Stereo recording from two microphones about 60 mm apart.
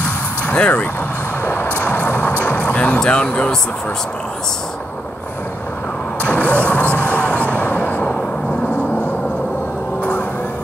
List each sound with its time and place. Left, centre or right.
0.6 s speech: left
1.4 s a sound: left
3.0 s speech: centre
6.2 s vehicle: left